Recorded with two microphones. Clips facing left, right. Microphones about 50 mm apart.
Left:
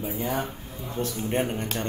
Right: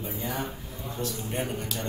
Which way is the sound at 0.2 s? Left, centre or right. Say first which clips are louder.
Left 4 dB; left.